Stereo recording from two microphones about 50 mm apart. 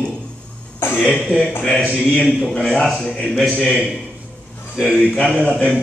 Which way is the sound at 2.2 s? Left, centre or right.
Right.